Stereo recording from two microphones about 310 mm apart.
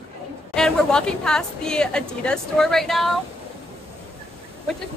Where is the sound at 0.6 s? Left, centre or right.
Centre.